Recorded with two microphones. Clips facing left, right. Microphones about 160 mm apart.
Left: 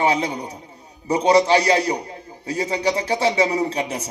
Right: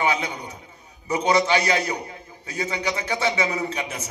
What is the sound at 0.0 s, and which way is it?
A man's voice, 35° left (ahead or behind).